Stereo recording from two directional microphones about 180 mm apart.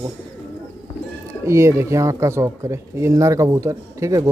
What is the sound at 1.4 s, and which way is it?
Speech, 15° right (ahead or behind).